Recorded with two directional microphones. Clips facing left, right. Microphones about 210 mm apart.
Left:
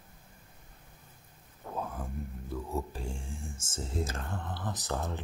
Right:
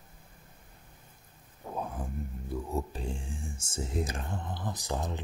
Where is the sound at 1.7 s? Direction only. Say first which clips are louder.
Right 1 dB; 15° right (ahead or behind).